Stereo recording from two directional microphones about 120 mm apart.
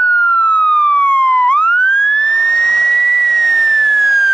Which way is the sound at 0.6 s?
10° left (ahead or behind).